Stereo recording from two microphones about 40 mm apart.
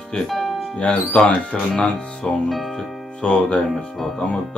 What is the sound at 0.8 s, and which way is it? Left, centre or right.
Speech, left.